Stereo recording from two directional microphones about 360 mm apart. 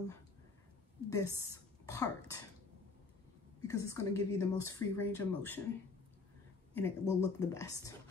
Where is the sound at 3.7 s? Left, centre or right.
Centre.